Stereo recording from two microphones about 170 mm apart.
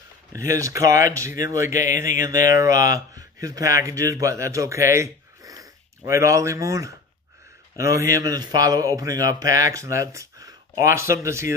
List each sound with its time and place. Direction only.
0.3 s speech: 20° right (ahead or behind)